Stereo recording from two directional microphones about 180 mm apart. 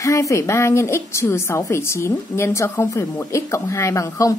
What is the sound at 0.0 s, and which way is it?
A woman's voice, 15° left (ahead or behind).